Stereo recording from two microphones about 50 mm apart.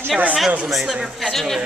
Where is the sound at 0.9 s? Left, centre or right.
Centre.